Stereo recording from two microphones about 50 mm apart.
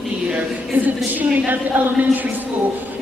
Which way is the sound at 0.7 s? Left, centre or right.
Right.